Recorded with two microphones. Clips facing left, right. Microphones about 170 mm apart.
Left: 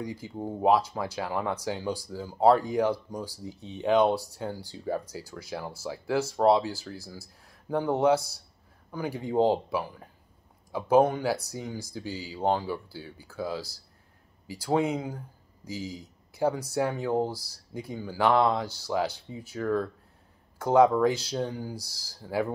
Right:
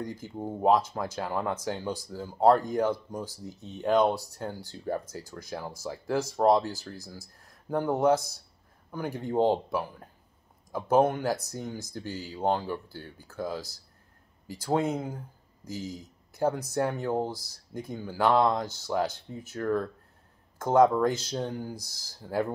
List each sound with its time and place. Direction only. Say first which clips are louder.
0.0 s speech: left 1 dB; 10° left (ahead or behind)